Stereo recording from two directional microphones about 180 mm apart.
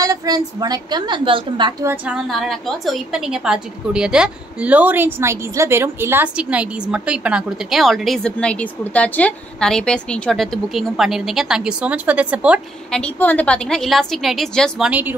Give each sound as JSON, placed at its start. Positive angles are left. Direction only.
{"t": 0.0, "sound": "a woman's voice", "side_deg": -20}
{"t": 2.2, "sound": "a woman's voice", "side_deg": 0}
{"t": 12.9, "sound": "a woman's voice", "side_deg": 10}
{"t": 14.9, "sound": "speech", "side_deg": -10}